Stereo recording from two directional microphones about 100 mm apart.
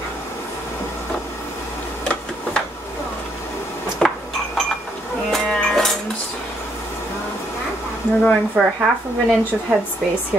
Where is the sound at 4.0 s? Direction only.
5° left (ahead or behind).